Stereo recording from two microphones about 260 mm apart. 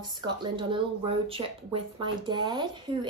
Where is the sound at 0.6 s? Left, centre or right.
Centre.